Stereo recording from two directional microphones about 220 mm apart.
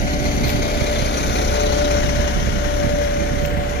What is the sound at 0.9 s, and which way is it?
Vehicle, 50° left (ahead or behind).